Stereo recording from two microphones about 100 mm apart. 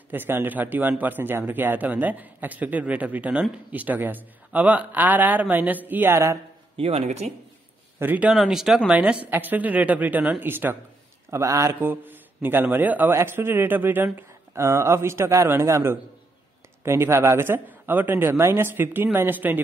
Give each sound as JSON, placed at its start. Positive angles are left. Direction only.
{"t": 0.1, "sound": "speech", "side_deg": -20}
{"t": 6.8, "sound": "speech", "side_deg": -90}
{"t": 8.0, "sound": "speech", "side_deg": -15}
{"t": 8.4, "sound": "speech", "side_deg": -5}
{"t": 11.2, "sound": "a man's voice", "side_deg": -30}
{"t": 11.8, "sound": "a man's voice", "side_deg": -20}